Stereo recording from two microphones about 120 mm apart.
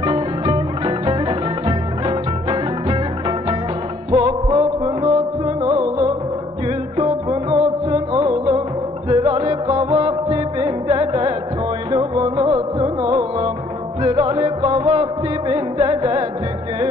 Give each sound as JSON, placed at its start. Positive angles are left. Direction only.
{"t": 0.0, "sound": "music", "side_deg": -45}